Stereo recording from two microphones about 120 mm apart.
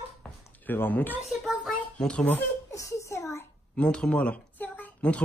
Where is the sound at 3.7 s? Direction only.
10° left (ahead or behind).